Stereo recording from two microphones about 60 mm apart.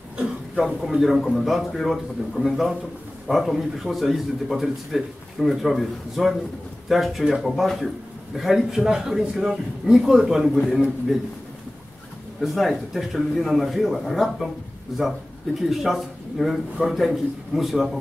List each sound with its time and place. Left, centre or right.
0.2 s throat clearing: centre
0.7 s a man's voice: centre
12.4 s a man's voice: centre